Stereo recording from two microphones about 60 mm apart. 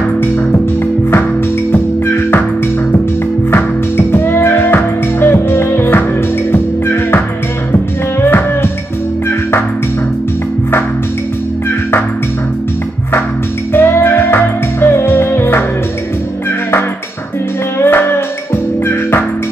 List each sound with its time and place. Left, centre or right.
1.7 s music: left
3.5 s music: left
13.7 s music: left
17.7 s music: left